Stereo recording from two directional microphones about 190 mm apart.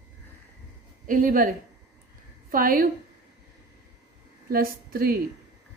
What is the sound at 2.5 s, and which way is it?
Speech, 50° right (ahead or behind).